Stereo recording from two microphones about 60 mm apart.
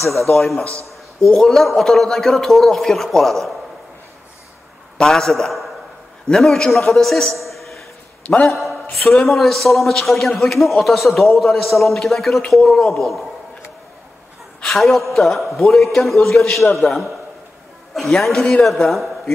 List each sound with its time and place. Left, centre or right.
0.4 s a man's voice: centre
0.7 s a man's voice: right
1.2 s a man's voice: centre
4.9 s a man's voice: centre
14.6 s a man's voice: centre
18.2 s a man's voice: centre